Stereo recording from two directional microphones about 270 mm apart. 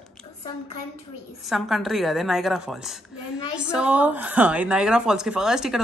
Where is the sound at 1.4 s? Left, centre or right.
Centre.